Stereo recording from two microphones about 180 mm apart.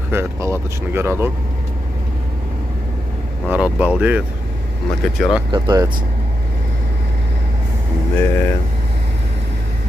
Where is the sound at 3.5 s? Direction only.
5° right (ahead or behind).